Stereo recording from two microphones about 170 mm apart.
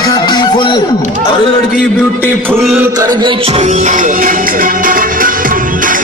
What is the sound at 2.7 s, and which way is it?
Music, 15° right (ahead or behind).